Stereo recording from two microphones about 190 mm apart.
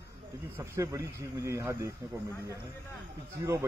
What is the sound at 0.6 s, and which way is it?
Speech, 15° right (ahead or behind).